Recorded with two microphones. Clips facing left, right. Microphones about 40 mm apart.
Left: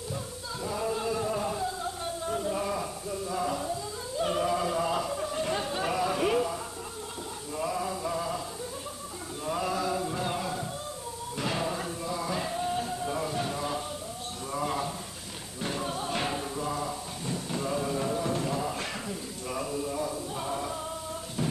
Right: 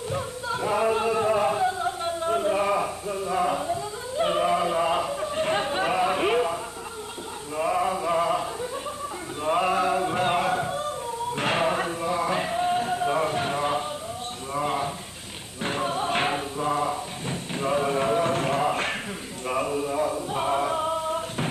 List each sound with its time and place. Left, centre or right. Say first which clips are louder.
0.1 s singing: right 10 dB; right
7.5 s mantra: right 7 dB; right
9.4 s a sound: right 8 dB; right
19.4 s music: right 7 dB; right